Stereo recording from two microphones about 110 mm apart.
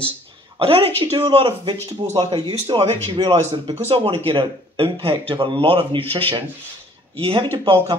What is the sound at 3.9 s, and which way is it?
Speech, 55° right (ahead or behind).